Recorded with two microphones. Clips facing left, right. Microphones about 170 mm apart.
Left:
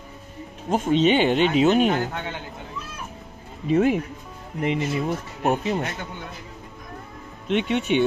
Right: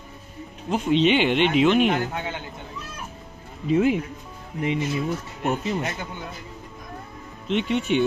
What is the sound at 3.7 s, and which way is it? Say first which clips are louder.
Speech: left 1 dB; 60° left (ahead or behind).